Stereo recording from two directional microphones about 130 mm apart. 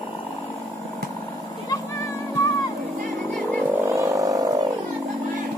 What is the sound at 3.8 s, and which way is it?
Vehicle, 25° right (ahead or behind).